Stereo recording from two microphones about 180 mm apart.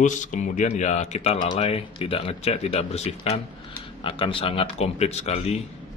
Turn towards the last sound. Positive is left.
turn(degrees=35)  # may be behind; listen again after turning